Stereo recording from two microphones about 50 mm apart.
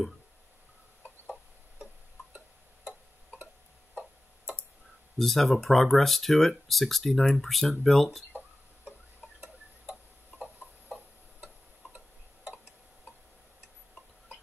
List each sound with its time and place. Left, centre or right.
5.2 s speech: centre